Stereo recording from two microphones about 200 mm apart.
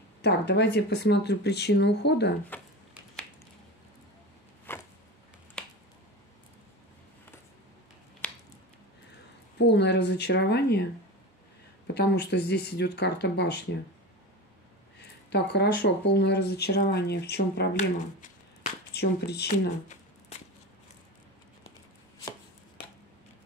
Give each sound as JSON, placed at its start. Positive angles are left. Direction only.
{"t": 0.2, "sound": "speech", "side_deg": 60}
{"t": 4.7, "sound": "a sound", "side_deg": 10}
{"t": 5.6, "sound": "finger snapping", "side_deg": 5}
{"t": 8.2, "sound": "squish", "side_deg": 5}
{"t": 9.6, "sound": "speech", "side_deg": 60}
{"t": 11.9, "sound": "speech", "side_deg": 55}
{"t": 15.2, "sound": "speech", "side_deg": 60}
{"t": 18.9, "sound": "speech", "side_deg": 55}